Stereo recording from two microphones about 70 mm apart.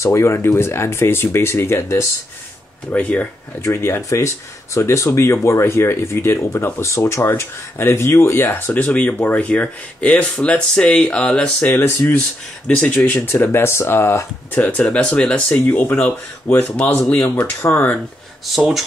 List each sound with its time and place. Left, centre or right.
0.0 s speech: left
2.9 s speech: left
3.6 s speech: left
17.6 s speech: left
18.5 s speech: centre